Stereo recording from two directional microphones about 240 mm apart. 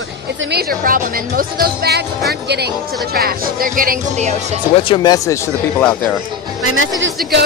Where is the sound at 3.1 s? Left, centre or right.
Right.